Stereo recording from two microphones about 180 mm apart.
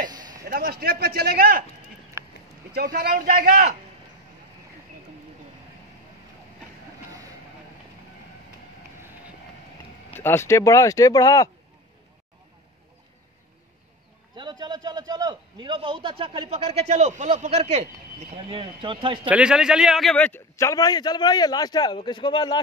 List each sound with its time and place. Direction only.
0.1 s a sound: 20° right (ahead or behind)
0.5 s a man's voice: 55° right (ahead or behind)
2.2 s a sound: 15° right (ahead or behind)
2.7 s a man's voice: 60° right (ahead or behind)
10.1 s speech: 15° left (ahead or behind)
14.3 s a man's voice: 25° right (ahead or behind)
18.5 s a man's voice: 30° right (ahead or behind)
19.2 s a man's voice: 5° right (ahead or behind); by 22.6 s 25° left (ahead or behind)